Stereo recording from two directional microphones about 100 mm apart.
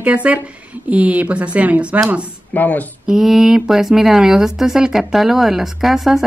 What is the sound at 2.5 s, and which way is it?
Speech, 15° left (ahead or behind).